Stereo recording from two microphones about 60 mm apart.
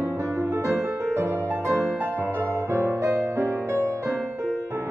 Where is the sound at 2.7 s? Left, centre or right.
Right.